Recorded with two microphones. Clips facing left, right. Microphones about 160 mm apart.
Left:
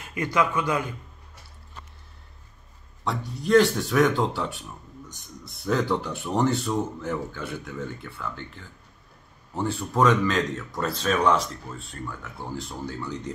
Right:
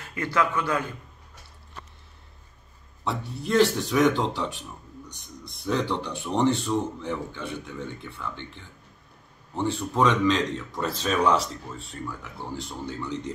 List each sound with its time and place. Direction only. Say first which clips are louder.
0.0 s a man's voice: left 1 dB; 15° left (ahead or behind)
3.0 s speech: even; centre (ahead or behind)
12.6 s speech: even; centre (ahead or behind)